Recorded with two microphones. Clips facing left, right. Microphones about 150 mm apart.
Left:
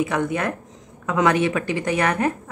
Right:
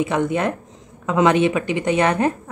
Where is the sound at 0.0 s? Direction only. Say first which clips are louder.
Right 3 dB; 25° right (ahead or behind).